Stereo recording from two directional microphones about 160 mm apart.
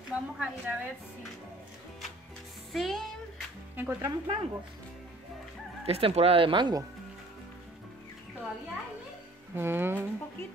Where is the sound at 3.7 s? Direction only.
15° right (ahead or behind).